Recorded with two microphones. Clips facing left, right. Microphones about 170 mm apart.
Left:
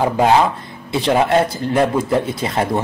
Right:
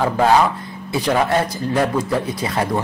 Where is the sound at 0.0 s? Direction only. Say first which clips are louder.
Left 1 dB; 20° left (ahead or behind).